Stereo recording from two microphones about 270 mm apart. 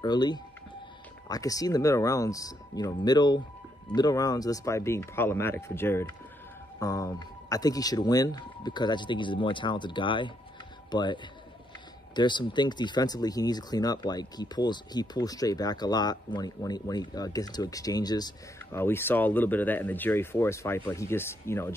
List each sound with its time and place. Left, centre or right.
0.0 s a man's voice: centre
12.2 s speech: centre